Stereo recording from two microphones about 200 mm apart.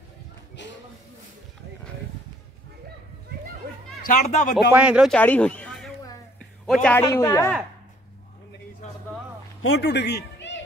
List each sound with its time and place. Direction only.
4.0 s a man's voice: 40° left (ahead or behind)
4.7 s speech: 5° right (ahead or behind)
5.1 s a man's voice: 5° left (ahead or behind)
9.8 s a man's voice: 60° left (ahead or behind)